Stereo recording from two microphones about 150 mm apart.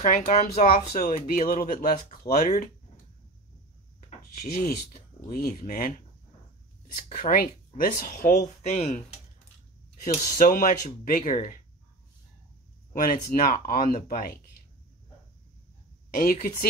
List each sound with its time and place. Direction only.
0.0 s speech: 55° left (ahead or behind); by 2.5 s 75° left (ahead or behind)
4.4 s speech: 65° left (ahead or behind)
7.2 s speech: 70° left (ahead or behind); by 8.4 s 85° left
8.6 s speech: 50° left (ahead or behind)
10.0 s speech: 70° left (ahead or behind)
12.9 s speech: 70° left (ahead or behind)
16.2 s speech: 70° left (ahead or behind)